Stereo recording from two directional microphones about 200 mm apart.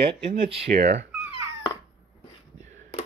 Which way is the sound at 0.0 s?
30° right (ahead or behind).